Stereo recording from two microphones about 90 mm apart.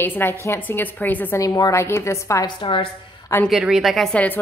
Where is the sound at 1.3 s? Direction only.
45° left (ahead or behind).